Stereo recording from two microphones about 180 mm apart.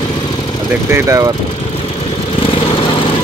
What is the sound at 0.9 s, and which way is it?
Speech, 15° right (ahead or behind).